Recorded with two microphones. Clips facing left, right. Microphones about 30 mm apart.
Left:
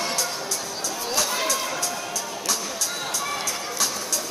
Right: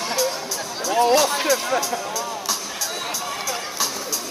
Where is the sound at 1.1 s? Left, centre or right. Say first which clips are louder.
Right 5 dB; centre.